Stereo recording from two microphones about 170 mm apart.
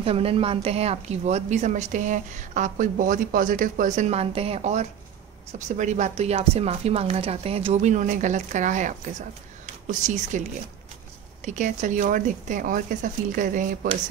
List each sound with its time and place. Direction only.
0.0 s a woman's voice: 35° right (ahead or behind); by 13.7 s 50° right (ahead or behind)